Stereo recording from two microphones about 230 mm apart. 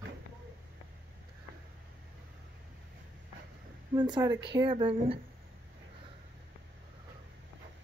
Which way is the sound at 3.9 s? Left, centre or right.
Centre.